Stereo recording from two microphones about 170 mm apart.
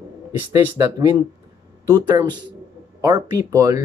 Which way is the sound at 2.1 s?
25° right (ahead or behind).